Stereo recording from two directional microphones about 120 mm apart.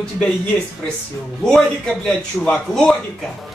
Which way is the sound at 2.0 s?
5° left (ahead or behind).